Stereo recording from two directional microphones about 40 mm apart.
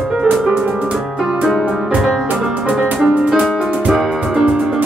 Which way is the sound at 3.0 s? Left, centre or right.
Centre.